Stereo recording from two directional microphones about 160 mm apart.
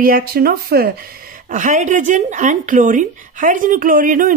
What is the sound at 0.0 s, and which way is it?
Speech, 65° right (ahead or behind).